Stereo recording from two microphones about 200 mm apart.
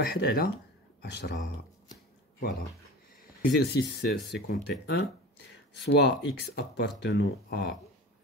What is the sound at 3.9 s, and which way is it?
Speech, 60° left (ahead or behind).